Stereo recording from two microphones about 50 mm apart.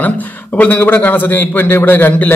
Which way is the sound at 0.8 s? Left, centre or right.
Left.